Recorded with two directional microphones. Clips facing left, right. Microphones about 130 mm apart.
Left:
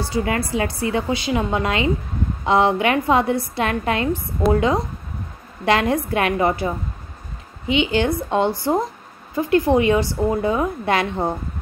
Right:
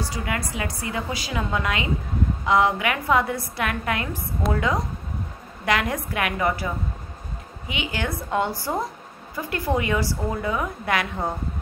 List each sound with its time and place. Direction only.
0.0 s a woman's voice: 30° left (ahead or behind)